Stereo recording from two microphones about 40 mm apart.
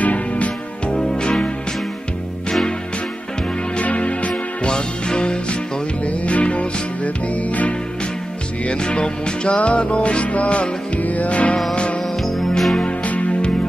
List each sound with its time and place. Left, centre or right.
0.0 s music: left
3.7 s music: left
4.6 s music: left
8.6 s music: left
12.2 s music: centre
12.8 s music: left